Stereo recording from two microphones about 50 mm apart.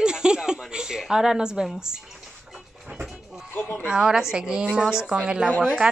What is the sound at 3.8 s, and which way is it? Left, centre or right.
Speech, centre.